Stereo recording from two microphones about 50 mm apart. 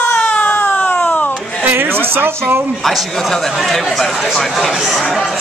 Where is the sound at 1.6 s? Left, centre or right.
Right.